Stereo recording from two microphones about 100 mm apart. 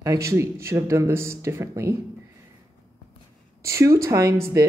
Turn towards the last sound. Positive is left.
turn(degrees=-30)  # may be behind; listen again after turning